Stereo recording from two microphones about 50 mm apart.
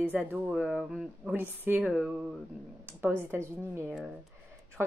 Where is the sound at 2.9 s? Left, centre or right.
Right.